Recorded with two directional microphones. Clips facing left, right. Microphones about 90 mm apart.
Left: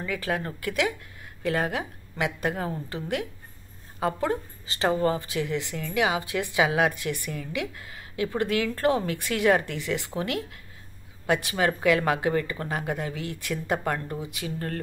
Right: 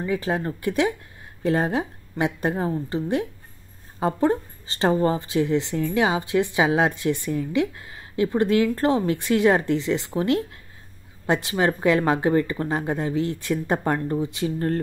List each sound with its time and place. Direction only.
0.0 s a woman's voice: 30° right (ahead or behind)